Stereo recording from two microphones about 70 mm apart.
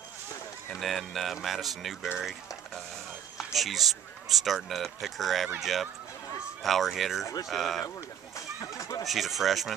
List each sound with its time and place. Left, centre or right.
0.7 s speech: centre
3.3 s speech: centre
8.4 s speech: left
9.0 s speech: centre